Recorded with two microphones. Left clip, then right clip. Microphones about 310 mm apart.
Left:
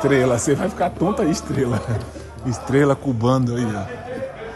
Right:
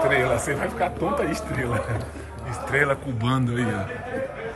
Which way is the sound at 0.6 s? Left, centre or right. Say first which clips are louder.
Left 4 dB; left.